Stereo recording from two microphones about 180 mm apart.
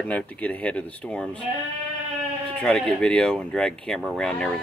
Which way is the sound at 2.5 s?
5° left (ahead or behind).